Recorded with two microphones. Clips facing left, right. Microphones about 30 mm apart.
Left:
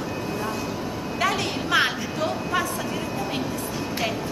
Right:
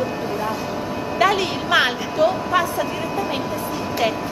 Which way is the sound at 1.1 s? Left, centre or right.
Centre.